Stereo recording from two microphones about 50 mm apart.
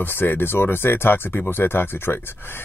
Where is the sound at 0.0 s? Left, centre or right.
Left.